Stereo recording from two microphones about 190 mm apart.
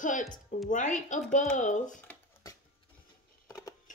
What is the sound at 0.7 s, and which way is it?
Speech, 40° left (ahead or behind).